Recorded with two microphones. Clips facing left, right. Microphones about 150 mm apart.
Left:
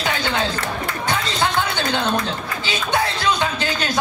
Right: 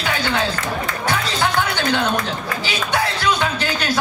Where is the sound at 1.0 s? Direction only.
20° left (ahead or behind).